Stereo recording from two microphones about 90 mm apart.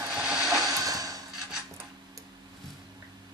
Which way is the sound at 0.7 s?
45° right (ahead or behind).